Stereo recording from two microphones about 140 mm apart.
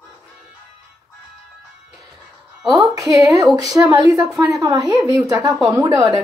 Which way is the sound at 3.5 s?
25° right (ahead or behind).